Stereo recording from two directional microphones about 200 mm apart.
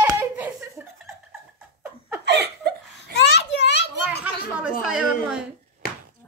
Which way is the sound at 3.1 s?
60° left (ahead or behind).